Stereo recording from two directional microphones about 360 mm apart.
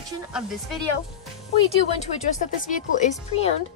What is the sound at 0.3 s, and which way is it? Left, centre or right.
Speech, centre.